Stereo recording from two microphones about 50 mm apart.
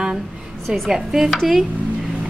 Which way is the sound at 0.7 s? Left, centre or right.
Centre.